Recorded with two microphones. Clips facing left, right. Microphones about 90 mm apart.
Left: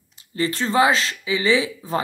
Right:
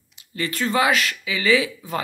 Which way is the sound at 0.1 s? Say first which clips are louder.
Left 4 dB; 30° left (ahead or behind).